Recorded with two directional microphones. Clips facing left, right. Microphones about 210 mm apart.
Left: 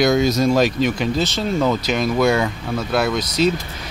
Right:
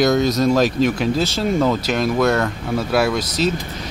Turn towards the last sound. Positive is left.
turn(degrees=-5)  # may be behind; listen again after turning